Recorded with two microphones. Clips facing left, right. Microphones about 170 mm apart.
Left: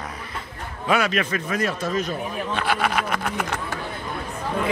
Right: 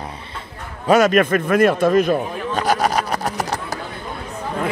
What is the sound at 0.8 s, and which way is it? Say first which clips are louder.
A man's voice: right 8 dB; 45° right (ahead or behind).